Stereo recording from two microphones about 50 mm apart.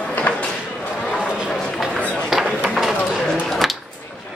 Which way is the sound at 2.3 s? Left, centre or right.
Centre.